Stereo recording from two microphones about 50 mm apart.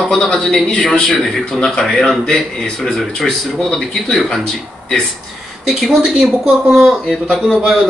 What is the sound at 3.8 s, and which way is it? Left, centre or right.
Speech, centre.